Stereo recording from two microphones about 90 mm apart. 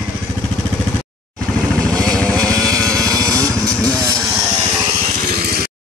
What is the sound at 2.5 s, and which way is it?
Vehicle, 40° right (ahead or behind).